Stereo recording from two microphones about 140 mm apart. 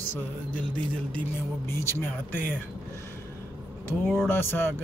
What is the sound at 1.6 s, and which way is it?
Music, 20° left (ahead or behind).